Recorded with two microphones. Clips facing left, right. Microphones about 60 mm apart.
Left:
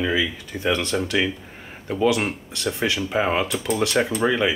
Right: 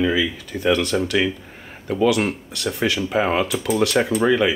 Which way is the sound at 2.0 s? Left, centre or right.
Left.